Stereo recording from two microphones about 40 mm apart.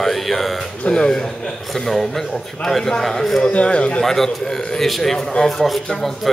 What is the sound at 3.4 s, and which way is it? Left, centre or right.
Speech, left.